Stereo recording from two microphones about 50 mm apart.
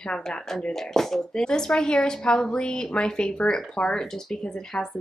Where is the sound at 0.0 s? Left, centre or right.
Centre.